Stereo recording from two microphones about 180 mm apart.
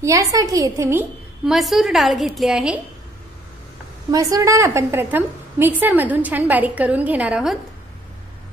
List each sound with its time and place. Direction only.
0.0 s a woman's voice: 15° right (ahead or behind)
1.4 s a woman's voice: centre (ahead or behind)
4.1 s a woman's voice: 20° right (ahead or behind)